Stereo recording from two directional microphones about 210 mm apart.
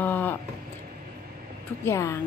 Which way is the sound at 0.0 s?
10° left (ahead or behind).